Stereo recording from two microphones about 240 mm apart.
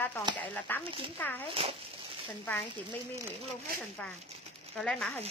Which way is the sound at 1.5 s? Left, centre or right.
Right.